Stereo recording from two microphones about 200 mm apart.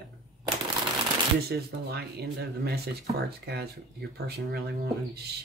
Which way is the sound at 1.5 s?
55° right (ahead or behind).